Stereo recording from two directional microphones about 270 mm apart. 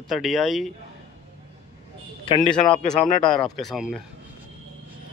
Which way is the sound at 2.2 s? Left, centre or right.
Centre.